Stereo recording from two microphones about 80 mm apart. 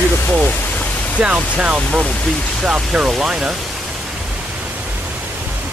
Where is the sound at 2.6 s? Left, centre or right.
Centre.